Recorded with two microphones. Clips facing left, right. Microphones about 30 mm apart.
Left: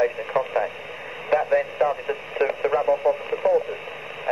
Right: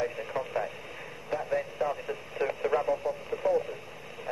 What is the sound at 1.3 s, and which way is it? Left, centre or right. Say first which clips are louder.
Radio: left 10 dB; left.